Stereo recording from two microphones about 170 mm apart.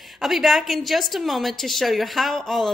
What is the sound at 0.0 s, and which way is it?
A woman's voice, centre (ahead or behind).